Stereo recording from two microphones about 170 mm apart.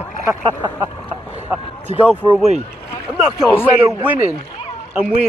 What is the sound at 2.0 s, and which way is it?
Speech, 5° right (ahead or behind).